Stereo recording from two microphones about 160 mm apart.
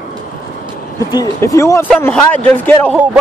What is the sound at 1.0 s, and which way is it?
Speech, 20° left (ahead or behind).